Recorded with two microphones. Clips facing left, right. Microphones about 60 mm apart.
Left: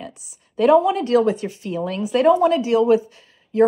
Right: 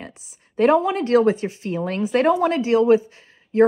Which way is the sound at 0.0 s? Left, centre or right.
Right.